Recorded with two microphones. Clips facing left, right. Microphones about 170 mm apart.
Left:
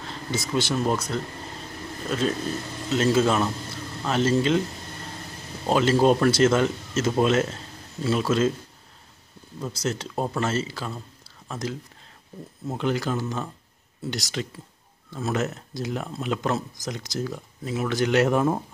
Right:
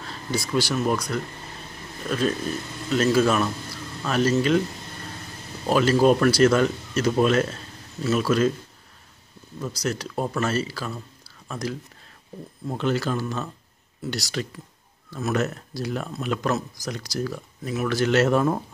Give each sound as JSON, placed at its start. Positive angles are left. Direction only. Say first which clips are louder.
{"t": 0.6, "sound": "speech", "louder": "right 1 dB", "side_deg": 25}
{"t": 5.7, "sound": "speech", "louder": "right 1 dB", "side_deg": 20}
{"t": 9.6, "sound": "speech", "louder": "right 1 dB", "side_deg": 25}